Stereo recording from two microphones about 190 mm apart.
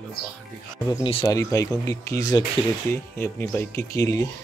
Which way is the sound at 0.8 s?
20° left (ahead or behind).